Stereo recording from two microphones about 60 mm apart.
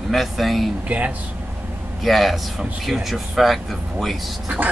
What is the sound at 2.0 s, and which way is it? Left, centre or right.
Speech, centre.